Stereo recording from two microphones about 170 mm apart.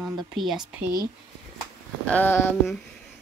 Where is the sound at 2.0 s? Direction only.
10° left (ahead or behind).